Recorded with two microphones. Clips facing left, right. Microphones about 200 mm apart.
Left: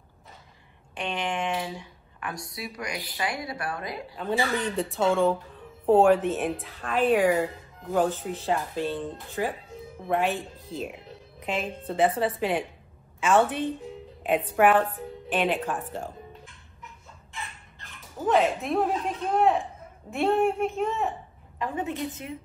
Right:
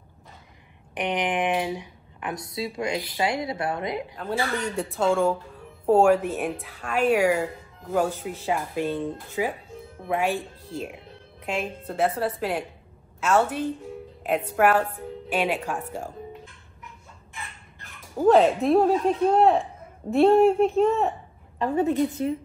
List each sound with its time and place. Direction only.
0.9 s speech: 15° right (ahead or behind)
4.2 s a woman's voice: centre (ahead or behind)
8.5 s speech: 15° right (ahead or behind)
10.7 s a woman's voice: centre (ahead or behind)
18.1 s speech: 35° right (ahead or behind)